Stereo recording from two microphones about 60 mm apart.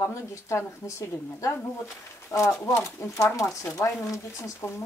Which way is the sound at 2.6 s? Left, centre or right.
Left.